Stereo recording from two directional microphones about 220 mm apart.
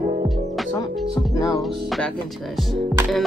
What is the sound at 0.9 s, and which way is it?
Music, centre (ahead or behind).